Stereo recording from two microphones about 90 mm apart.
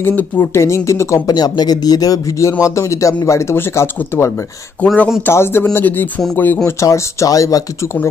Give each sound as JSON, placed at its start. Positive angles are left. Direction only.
{"t": 0.0, "sound": "speech", "side_deg": 20}
{"t": 1.3, "sound": "speech", "side_deg": 50}
{"t": 4.8, "sound": "speech", "side_deg": 15}
{"t": 5.2, "sound": "speech", "side_deg": 25}